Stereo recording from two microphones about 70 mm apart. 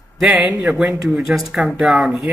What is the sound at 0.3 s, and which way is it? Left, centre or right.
Speech, centre.